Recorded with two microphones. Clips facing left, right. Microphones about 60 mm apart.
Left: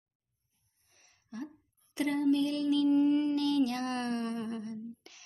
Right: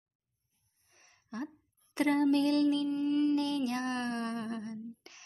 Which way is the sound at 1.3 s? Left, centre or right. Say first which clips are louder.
Right 2 dB; right.